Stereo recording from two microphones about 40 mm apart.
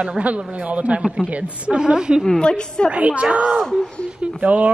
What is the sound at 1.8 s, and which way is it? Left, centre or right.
Speech, centre.